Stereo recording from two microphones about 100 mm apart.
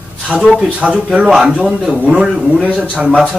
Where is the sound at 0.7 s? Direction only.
10° right (ahead or behind).